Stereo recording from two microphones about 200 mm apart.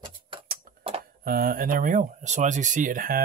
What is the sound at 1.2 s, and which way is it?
Speech, 45° right (ahead or behind).